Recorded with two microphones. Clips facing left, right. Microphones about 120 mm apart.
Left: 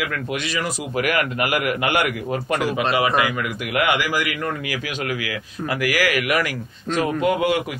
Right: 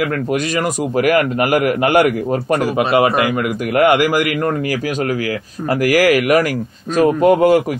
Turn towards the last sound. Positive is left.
turn(degrees=-40)  # may be behind; listen again after turning